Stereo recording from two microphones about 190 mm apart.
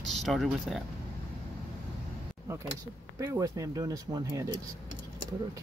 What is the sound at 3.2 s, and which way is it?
Speech, 15° right (ahead or behind).